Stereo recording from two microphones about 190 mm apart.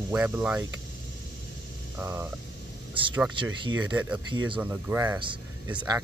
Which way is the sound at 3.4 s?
25° right (ahead or behind).